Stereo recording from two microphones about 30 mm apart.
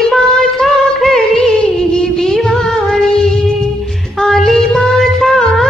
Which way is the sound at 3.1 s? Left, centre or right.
Centre.